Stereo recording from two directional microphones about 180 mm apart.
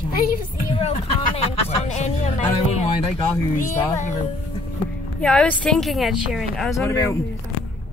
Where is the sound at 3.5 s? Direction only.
45° left (ahead or behind).